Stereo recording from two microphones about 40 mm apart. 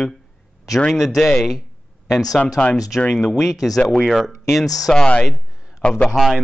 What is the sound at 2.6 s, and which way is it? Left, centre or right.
Speech, left.